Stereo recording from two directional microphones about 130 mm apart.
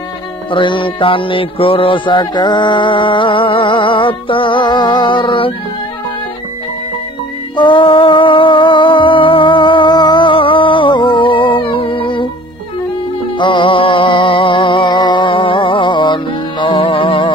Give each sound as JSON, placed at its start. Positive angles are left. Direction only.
{"t": 0.5, "sound": "music", "side_deg": 40}
{"t": 7.5, "sound": "music", "side_deg": 40}
{"t": 13.4, "sound": "music", "side_deg": 40}